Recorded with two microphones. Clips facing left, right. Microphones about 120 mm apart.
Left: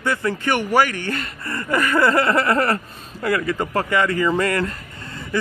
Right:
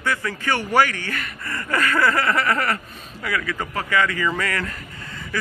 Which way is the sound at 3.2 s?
35° left (ahead or behind).